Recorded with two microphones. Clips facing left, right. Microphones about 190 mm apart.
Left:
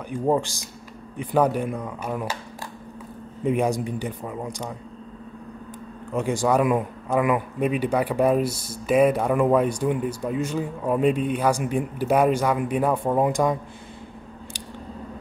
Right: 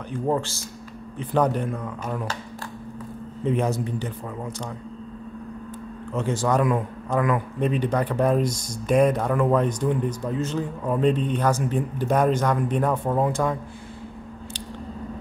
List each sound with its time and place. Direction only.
0.1 s a man's voice: 15° left (ahead or behind)
3.4 s a man's voice: 10° left (ahead or behind)
6.1 s a man's voice: 10° left (ahead or behind)